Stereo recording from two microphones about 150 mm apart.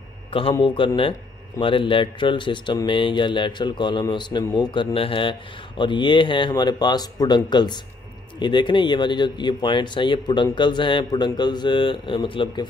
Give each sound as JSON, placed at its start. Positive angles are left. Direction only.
{"t": 0.3, "sound": "speech", "side_deg": 35}